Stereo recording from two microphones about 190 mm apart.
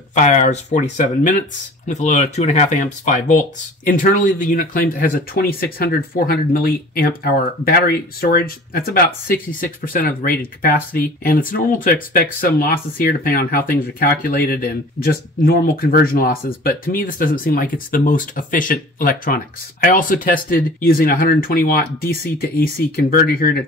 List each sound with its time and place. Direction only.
0.1 s speech: 40° left (ahead or behind)